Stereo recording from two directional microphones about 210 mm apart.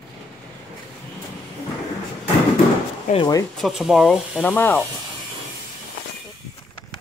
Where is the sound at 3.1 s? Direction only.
20° left (ahead or behind).